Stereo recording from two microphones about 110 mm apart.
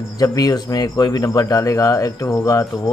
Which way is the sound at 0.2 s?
35° left (ahead or behind).